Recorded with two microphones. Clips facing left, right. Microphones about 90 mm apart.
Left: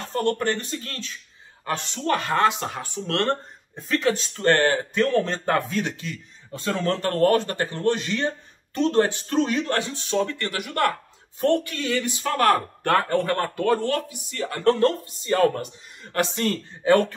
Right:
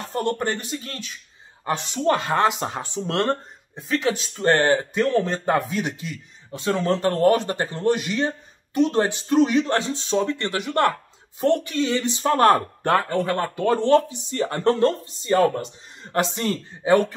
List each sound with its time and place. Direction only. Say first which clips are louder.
0.1 s speech: left 1 dB; 20° right (ahead or behind)